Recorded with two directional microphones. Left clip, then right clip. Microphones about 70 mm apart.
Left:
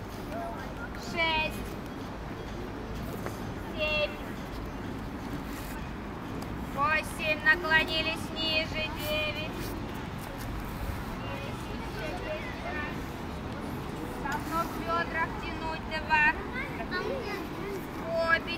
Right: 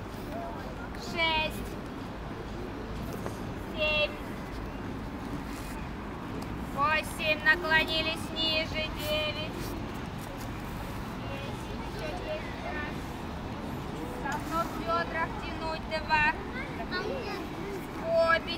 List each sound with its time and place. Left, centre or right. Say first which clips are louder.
1.1 s a sound: even; right
3.8 s a sound: right 1 dB; right
6.8 s speech: even; right
14.3 s vehicle: even; centre
14.9 s vehicle: even; centre
18.1 s vehicle: right 2 dB; centre